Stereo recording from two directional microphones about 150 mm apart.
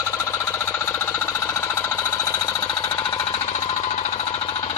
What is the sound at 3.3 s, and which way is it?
Jackhammer, 45° left (ahead or behind).